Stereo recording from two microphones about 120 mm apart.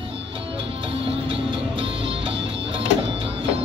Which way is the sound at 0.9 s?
50° right (ahead or behind).